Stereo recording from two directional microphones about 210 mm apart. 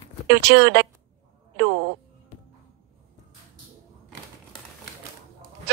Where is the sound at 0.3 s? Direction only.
50° right (ahead or behind).